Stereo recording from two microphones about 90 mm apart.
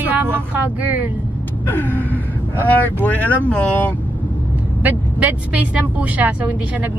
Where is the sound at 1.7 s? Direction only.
20° left (ahead or behind).